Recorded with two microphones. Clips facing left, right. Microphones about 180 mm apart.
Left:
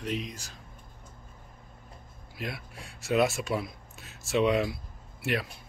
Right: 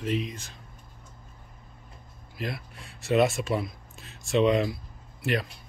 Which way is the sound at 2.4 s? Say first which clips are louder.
Right 3 dB; centre (ahead or behind).